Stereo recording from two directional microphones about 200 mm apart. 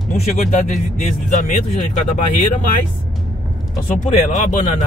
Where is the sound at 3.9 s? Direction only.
40° left (ahead or behind).